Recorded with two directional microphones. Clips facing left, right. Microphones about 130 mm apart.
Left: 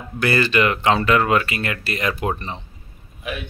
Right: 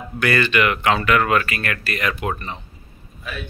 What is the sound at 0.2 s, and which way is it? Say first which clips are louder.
Speech: left 1 dB; 30° left (ahead or behind).